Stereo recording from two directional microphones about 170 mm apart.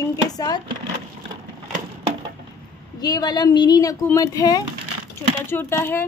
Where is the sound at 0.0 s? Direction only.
20° left (ahead or behind).